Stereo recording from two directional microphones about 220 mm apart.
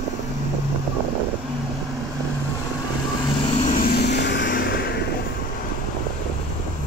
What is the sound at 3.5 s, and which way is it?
Vehicle, 35° left (ahead or behind).